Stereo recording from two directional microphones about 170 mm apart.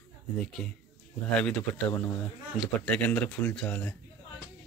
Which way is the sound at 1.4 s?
10° left (ahead or behind).